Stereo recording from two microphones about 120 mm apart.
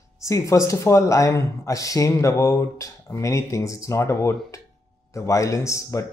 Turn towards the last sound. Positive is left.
turn(degrees=25)  # may be behind; listen again after turning